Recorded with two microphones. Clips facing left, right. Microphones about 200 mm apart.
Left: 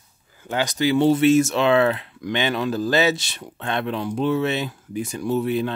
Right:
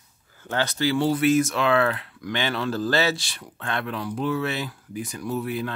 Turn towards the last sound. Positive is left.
turn(degrees=25)  # may be behind; listen again after turning